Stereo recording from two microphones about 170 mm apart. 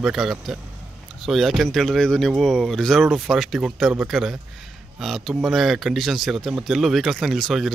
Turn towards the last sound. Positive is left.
turn(degrees=0)  # may be behind; listen again after turning